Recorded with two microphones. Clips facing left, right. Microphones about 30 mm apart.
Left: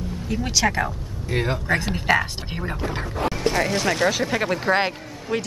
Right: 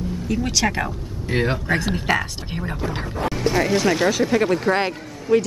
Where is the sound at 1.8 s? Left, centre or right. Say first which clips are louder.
Left 1 dB; centre.